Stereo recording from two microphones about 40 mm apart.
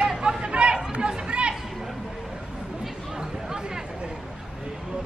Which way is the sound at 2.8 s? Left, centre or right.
Centre.